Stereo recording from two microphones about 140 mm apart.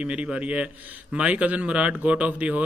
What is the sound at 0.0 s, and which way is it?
A man's voice, 10° right (ahead or behind).